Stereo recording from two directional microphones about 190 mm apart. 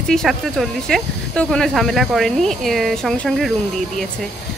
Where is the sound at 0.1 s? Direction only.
Centre (ahead or behind).